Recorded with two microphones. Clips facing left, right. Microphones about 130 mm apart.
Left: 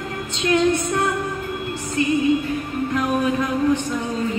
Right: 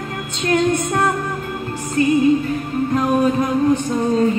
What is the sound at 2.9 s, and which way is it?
Music, 40° right (ahead or behind).